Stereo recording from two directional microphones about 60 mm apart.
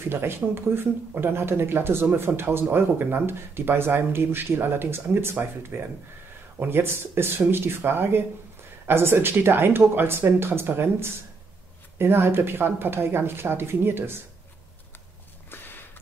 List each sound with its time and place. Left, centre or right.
0.1 s speech: right